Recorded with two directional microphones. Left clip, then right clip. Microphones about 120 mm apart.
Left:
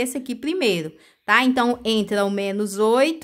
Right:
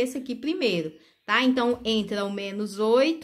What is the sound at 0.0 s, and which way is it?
A woman's voice, 45° left (ahead or behind).